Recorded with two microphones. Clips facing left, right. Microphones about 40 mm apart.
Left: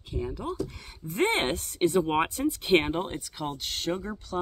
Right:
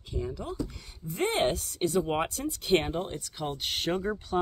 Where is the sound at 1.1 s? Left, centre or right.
Left.